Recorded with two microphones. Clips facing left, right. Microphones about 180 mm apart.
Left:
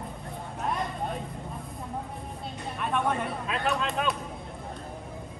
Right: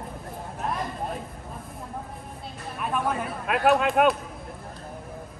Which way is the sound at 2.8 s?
5° right (ahead or behind).